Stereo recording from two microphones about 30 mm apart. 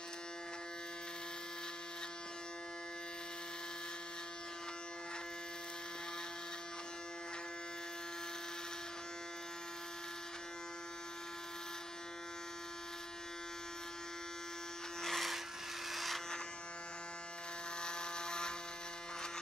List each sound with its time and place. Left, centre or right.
15.0 s electric shaver: centre
15.9 s electric shaver: centre
17.8 s a sound: left